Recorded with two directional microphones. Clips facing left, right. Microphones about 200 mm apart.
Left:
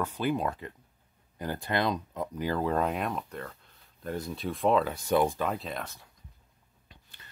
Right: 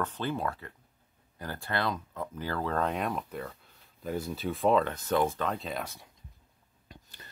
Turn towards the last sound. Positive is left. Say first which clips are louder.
# right 6 dB
turn(degrees=-40)  # may be behind; listen again after turning